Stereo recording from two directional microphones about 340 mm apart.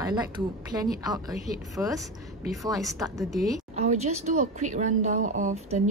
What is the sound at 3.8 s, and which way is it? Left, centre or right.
Speech, centre.